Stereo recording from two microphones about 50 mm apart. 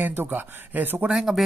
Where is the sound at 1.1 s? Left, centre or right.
Centre.